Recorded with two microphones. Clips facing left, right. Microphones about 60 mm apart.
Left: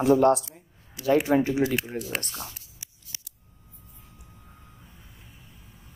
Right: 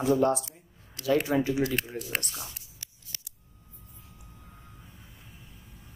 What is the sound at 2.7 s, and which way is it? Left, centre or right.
Scissors, centre.